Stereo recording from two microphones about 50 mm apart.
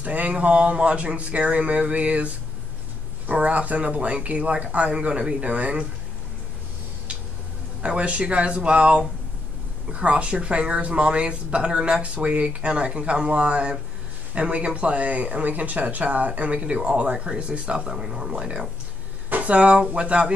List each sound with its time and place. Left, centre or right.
0.0 s speech: right
3.3 s speech: right
7.8 s speech: right
19.2 s a sound: right
19.9 s speech: right